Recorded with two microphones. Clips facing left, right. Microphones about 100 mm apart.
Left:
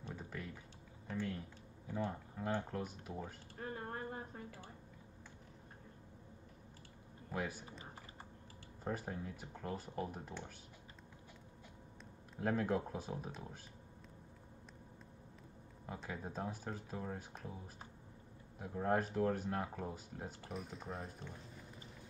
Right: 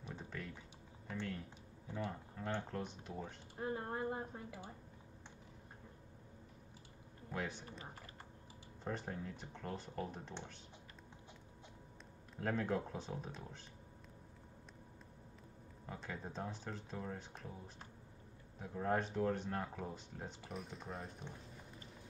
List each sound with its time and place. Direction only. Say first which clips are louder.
0.1 s typing: even; 5° left (ahead or behind)
2.0 s speech: left 1 dB; 10° left (ahead or behind)
3.5 s a sound: right 4 dB; 20° right (ahead or behind)
7.2 s speech: left 1 dB; 5° left (ahead or behind)
8.8 s speech: left 1 dB; 5° left (ahead or behind)
12.4 s speech: left 2 dB; 5° left (ahead or behind)
15.9 s speech: left 2 dB; 5° left (ahead or behind)
18.6 s speech: left 2 dB; 5° left (ahead or behind)